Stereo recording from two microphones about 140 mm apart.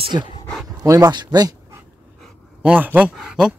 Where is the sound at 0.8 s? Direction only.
25° right (ahead or behind).